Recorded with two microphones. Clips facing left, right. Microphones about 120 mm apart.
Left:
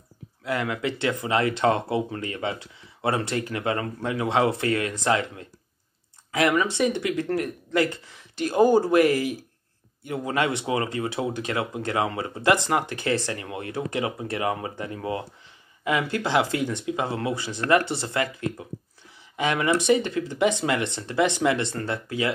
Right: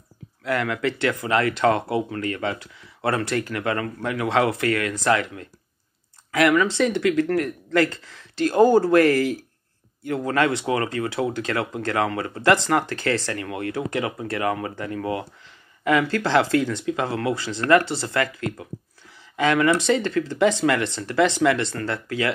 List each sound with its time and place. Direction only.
0.4 s speech: 20° left (ahead or behind)